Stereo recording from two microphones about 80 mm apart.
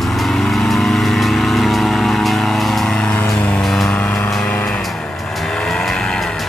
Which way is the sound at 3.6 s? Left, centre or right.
Centre.